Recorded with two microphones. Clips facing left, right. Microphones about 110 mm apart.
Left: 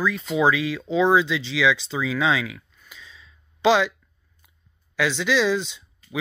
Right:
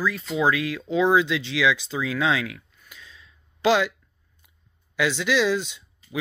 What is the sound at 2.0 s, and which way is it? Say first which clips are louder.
Speech: left 1 dB; 55° right (ahead or behind).